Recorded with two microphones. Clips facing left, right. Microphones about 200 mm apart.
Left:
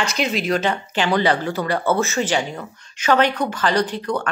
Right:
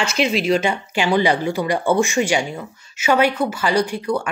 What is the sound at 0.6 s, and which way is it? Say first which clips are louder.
Speech: right 1 dB; 10° right (ahead or behind).